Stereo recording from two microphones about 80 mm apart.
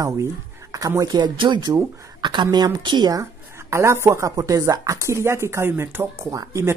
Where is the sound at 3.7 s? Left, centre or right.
Right.